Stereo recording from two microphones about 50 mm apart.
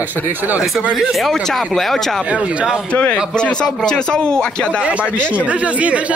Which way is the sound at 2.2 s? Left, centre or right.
Right.